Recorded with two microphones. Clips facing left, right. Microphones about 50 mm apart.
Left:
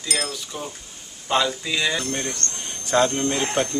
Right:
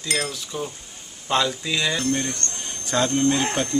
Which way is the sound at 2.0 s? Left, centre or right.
Centre.